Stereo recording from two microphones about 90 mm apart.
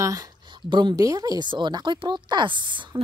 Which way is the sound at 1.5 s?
55° right (ahead or behind).